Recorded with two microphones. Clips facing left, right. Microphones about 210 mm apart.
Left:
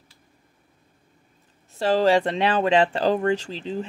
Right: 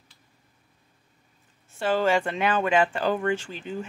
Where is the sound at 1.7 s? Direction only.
35° left (ahead or behind).